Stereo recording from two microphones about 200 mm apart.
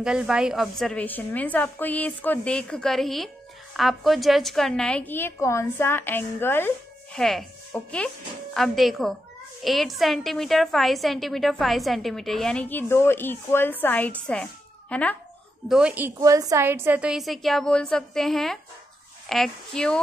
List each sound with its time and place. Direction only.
0.0 s a woman's voice: 5° right (ahead or behind)
15.7 s a woman's voice: 5° right (ahead or behind)